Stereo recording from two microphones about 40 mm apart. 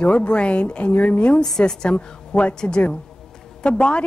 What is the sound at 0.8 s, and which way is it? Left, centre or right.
Speech, left.